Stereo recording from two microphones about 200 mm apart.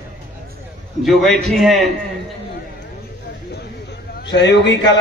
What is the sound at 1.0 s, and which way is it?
Speech, centre (ahead or behind).